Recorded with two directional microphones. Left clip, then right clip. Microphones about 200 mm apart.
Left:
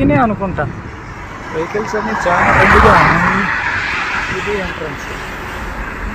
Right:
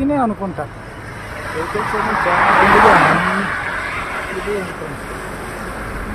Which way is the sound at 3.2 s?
45° right (ahead or behind).